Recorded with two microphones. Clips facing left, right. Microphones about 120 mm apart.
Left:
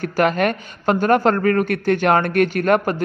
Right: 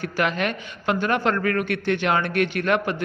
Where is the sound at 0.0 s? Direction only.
45° left (ahead or behind).